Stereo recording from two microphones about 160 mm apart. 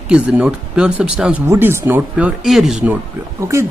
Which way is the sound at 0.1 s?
5° right (ahead or behind).